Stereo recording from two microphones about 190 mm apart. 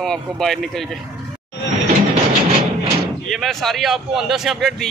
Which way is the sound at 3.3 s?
Centre (ahead or behind).